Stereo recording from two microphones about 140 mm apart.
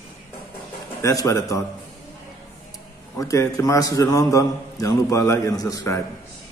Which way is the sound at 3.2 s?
25° left (ahead or behind).